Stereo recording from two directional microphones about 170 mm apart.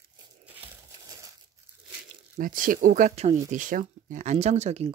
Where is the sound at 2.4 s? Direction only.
55° right (ahead or behind).